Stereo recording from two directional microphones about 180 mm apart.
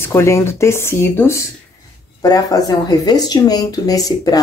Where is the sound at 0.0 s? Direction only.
15° left (ahead or behind).